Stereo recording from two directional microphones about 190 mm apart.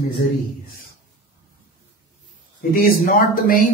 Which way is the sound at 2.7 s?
50° left (ahead or behind).